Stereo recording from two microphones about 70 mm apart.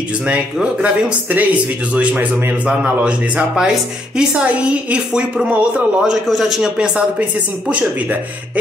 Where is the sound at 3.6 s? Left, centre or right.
Centre.